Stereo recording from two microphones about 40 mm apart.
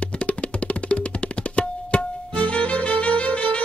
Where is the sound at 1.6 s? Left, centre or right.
Left.